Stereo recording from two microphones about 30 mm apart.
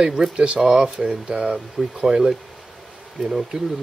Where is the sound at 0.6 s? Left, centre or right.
Centre.